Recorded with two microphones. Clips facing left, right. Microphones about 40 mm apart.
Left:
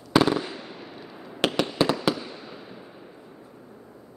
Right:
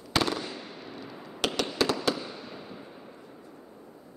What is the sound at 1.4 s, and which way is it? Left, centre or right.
Fireworks, left.